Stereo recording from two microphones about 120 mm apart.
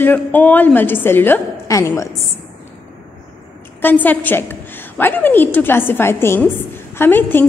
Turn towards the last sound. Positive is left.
turn(degrees=15)  # may be behind; listen again after turning